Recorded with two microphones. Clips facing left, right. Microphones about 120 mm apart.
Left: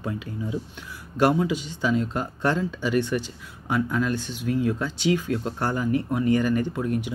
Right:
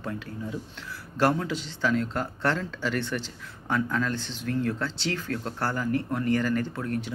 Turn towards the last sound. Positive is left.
turn(degrees=15)  # may be behind; listen again after turning